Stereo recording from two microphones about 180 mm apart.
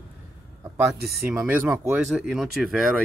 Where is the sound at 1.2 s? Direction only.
5° right (ahead or behind).